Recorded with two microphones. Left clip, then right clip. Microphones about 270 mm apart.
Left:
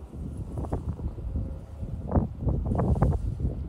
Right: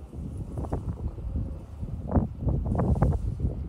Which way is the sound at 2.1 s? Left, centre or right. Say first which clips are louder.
Even; centre.